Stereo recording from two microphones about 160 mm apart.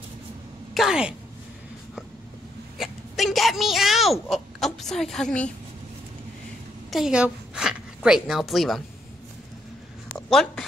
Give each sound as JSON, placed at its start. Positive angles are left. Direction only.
{"t": 0.7, "sound": "a woman's voice", "side_deg": -5}
{"t": 2.8, "sound": "speech", "side_deg": 0}
{"t": 6.9, "sound": "a woman's voice", "side_deg": -5}
{"t": 10.1, "sound": "a sound", "side_deg": 0}